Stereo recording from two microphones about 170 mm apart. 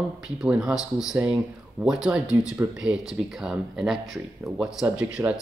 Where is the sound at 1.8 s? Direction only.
5° right (ahead or behind).